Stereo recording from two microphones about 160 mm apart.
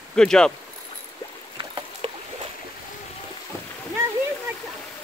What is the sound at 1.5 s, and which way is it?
Rowboat, 30° right (ahead or behind).